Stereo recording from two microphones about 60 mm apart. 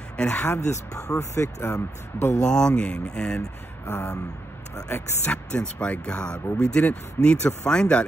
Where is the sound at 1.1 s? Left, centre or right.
Left.